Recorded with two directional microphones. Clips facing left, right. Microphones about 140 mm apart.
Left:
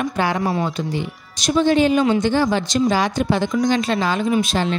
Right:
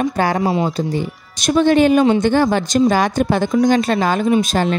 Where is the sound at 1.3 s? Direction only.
55° right (ahead or behind).